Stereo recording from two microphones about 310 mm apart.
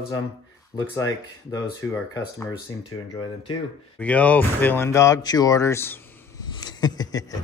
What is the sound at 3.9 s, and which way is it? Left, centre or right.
Speech, centre.